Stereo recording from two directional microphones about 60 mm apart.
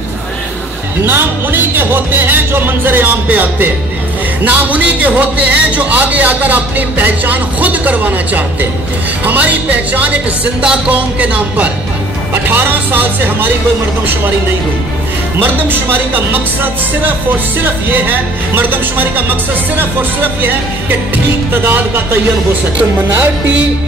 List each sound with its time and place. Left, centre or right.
1.0 s speech: right
12.4 s speech: right
15.4 s speech: right